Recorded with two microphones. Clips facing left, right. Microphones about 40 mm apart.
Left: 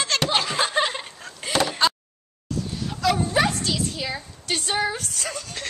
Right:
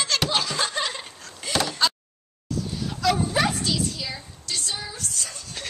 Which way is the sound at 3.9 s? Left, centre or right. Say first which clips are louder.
Left 4 dB; left.